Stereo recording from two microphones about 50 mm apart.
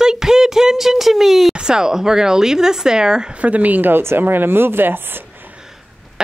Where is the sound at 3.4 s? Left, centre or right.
Right.